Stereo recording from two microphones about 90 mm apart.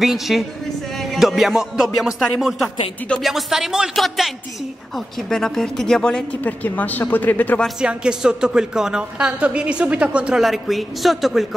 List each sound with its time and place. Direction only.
0.0 s speech: centre (ahead or behind)
0.9 s music: centre (ahead or behind)
3.1 s speech: centre (ahead or behind); by 7.6 s 20° left (ahead or behind)
7.8 s a woman's voice: 10° right (ahead or behind)
10.4 s speech: centre (ahead or behind)